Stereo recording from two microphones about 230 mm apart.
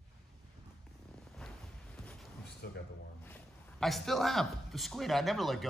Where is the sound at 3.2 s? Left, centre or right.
Centre.